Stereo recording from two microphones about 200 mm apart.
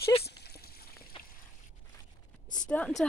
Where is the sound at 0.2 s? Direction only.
55° left (ahead or behind).